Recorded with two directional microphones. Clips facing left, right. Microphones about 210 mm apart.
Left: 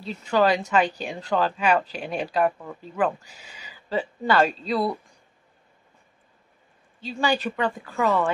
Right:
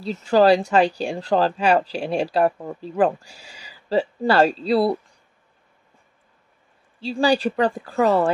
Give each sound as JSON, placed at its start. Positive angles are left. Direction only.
{"t": 0.0, "sound": "speech", "side_deg": -35}
{"t": 7.0, "sound": "speech", "side_deg": -35}